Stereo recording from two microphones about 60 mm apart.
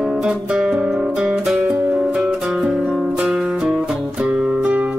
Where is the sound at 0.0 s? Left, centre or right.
Centre.